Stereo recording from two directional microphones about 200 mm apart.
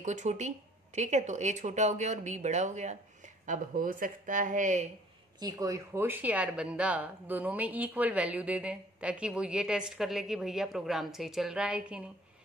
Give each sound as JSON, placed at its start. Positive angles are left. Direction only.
{"t": 0.0, "sound": "speech", "side_deg": -35}
{"t": 5.4, "sound": "speech", "side_deg": -15}